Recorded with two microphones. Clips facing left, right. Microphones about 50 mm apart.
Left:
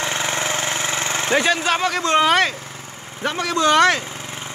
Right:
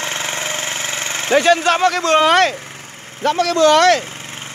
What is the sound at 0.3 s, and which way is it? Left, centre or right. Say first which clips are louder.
Engine: left 1 dB; centre.